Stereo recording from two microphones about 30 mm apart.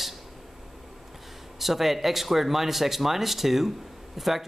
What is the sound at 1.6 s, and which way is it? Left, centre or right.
Speech, centre.